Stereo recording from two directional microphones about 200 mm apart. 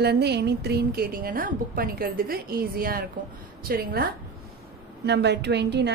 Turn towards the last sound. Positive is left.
turn(degrees=-60)  # may be behind; listen again after turning